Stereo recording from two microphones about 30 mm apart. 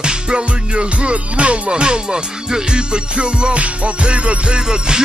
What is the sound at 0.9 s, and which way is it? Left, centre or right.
Music, right.